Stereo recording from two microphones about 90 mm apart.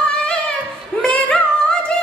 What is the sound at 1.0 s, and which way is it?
Singing, 15° left (ahead or behind).